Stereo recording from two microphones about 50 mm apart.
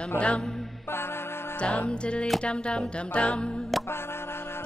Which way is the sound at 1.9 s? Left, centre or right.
Left.